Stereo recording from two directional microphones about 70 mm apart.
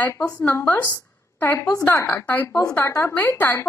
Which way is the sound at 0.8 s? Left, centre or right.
Left.